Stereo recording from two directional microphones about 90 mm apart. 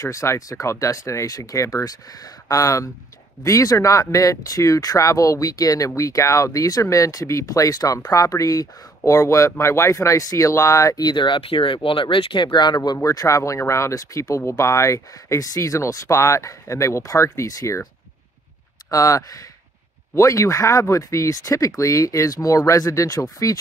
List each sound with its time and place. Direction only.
0.0 s speech: 35° left (ahead or behind); by 13.0 s 50° left (ahead or behind)
13.0 s speech: 40° left (ahead or behind)
18.9 s speech: 35° left (ahead or behind)